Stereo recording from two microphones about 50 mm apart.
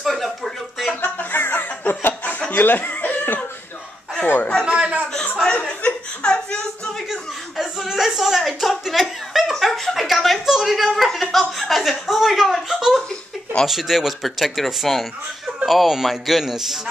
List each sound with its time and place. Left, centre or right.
0.0 s a sound: centre
1.0 s music: left
1.4 s snicker: left
2.6 s chicken: left
4.6 s a man's voice: right
5.4 s speech: centre
5.8 s chuckle: left
7.1 s chuckle: centre
13.7 s speech: centre